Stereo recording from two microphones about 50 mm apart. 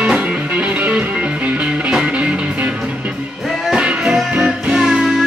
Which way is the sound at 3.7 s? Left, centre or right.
Centre.